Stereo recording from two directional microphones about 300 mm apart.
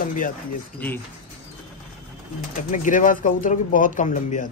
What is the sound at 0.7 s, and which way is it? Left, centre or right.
Speech, centre.